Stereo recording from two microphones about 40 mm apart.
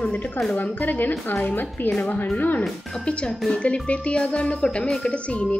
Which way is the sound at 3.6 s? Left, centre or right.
Left.